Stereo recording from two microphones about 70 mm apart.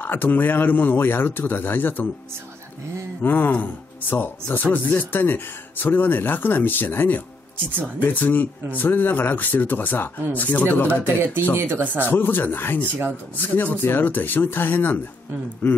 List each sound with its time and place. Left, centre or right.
0.0 s speech: left
3.2 s speech: left
11.5 s speech: right
12.1 s speech: left